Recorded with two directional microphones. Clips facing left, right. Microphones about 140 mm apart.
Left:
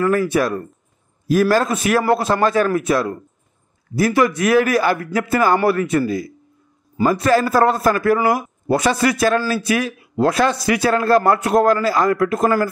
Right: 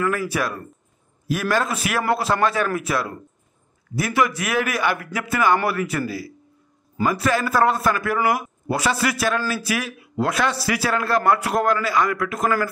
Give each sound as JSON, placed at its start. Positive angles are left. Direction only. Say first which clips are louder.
{"t": 0.0, "sound": "a man's voice", "louder": "left 6 dB", "side_deg": 30}